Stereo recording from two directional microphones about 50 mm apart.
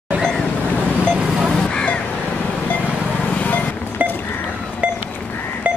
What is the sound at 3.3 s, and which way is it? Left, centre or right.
Vehicle, left.